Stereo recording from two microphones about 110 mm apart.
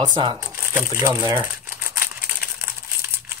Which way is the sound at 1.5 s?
20° right (ahead or behind).